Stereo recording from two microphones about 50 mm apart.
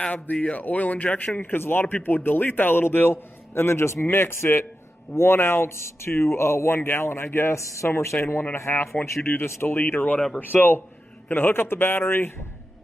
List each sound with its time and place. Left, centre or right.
0.1 s a man's voice: left
8.5 s a man's voice: left